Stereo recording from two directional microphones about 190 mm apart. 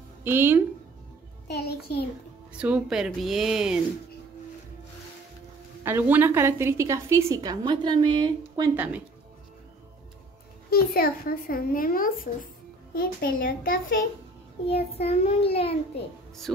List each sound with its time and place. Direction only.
0.2 s a woman's voice: 10° right (ahead or behind)
1.5 s a child's voice: 60° left (ahead or behind)
2.5 s speech: 5° right (ahead or behind)
5.9 s a woman's voice: 10° right (ahead or behind)
8.7 s a woman's voice: 5° right (ahead or behind)
10.7 s speech: 50° left (ahead or behind)
14.7 s child singing: 30° left (ahead or behind)
16.5 s speech: centre (ahead or behind)